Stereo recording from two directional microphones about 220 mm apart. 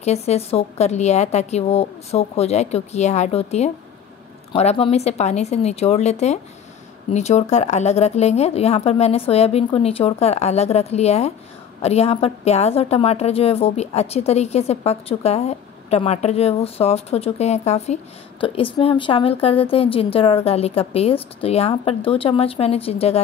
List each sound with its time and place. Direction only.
0.0 s a woman's voice: 30° left (ahead or behind)